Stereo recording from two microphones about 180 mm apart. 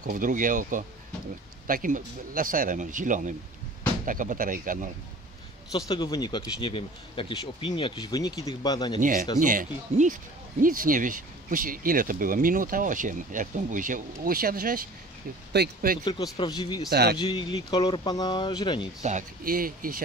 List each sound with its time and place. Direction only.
0.0 s speech: 50° right (ahead or behind)
5.7 s speech: 20° left (ahead or behind)
9.0 s speech: 45° right (ahead or behind)
16.0 s speech: 25° left (ahead or behind)
16.9 s speech: 65° right (ahead or behind)
17.2 s speech: 25° left (ahead or behind)
19.0 s speech: 50° right (ahead or behind)